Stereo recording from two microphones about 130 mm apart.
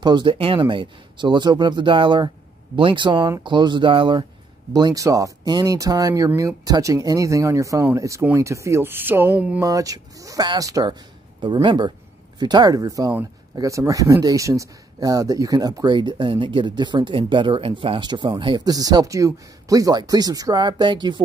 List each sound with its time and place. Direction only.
0.0 s speech: 35° right (ahead or behind); by 9.6 s 10° right (ahead or behind)
9.6 s speech: 25° right (ahead or behind)